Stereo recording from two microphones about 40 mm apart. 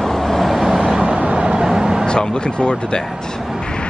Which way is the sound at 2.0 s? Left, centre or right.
Left.